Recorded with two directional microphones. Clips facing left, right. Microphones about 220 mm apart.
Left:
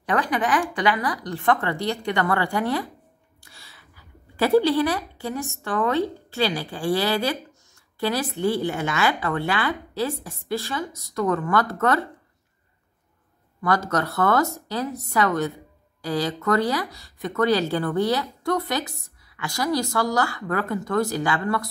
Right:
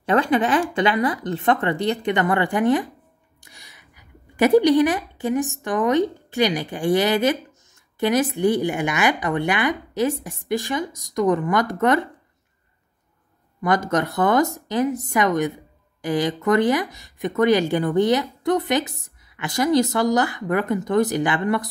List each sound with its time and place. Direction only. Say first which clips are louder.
0.0 s a woman's voice: right 5 dB; 25° right (ahead or behind)
13.6 s a woman's voice: right 3 dB; 20° right (ahead or behind)